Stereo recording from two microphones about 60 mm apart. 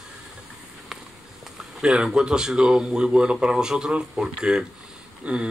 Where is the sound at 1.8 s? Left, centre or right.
Centre.